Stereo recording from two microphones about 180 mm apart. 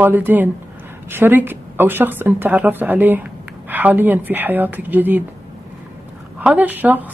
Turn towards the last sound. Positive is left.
turn(degrees=-10)  # may be behind; listen again after turning